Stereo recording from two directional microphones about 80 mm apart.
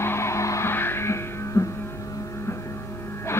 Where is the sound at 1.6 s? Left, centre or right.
Left.